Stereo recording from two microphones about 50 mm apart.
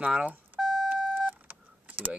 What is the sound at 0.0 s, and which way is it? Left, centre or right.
Speech, right.